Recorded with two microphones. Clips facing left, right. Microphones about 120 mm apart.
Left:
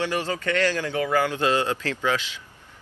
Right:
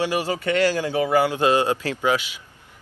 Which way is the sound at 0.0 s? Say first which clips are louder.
Right 3 dB; 15° right (ahead or behind).